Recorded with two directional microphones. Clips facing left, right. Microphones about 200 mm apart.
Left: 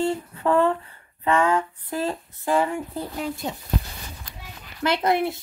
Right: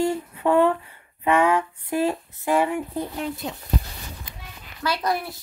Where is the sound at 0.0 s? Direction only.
10° right (ahead or behind).